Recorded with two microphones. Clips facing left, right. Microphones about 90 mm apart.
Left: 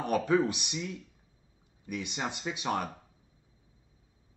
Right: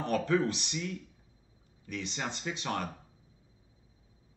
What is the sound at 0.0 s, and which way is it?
A man's voice, 15° left (ahead or behind).